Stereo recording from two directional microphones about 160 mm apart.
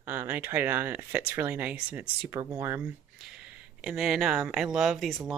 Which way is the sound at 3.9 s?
Centre (ahead or behind).